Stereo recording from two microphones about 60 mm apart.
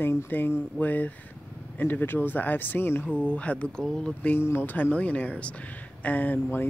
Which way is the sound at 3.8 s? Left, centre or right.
Centre.